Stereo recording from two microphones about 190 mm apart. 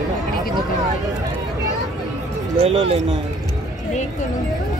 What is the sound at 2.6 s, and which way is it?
Speech, 30° right (ahead or behind).